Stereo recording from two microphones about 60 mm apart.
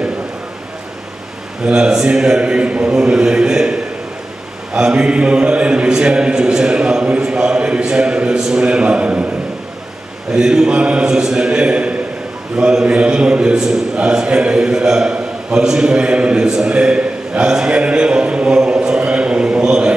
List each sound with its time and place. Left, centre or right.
1.6 s mantra: centre
10.3 s mantra: centre
12.5 s a man's voice: centre